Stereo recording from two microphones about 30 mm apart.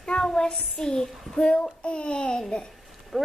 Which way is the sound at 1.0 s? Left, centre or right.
Centre.